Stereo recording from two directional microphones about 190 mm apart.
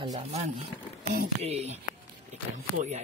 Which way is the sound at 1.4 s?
35° right (ahead or behind).